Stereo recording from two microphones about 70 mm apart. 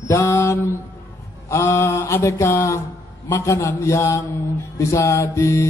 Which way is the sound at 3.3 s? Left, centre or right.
Left.